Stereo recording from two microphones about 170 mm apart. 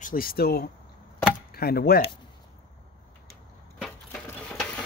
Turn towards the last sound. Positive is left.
turn(degrees=0)  # may be behind; listen again after turning